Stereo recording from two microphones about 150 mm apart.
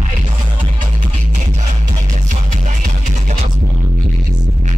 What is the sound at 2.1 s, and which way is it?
Music, 55° right (ahead or behind).